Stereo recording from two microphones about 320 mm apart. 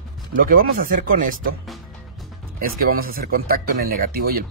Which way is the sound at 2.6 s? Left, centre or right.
Right.